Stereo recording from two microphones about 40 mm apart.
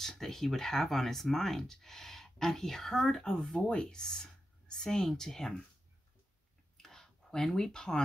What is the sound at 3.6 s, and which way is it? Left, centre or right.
Speech, left.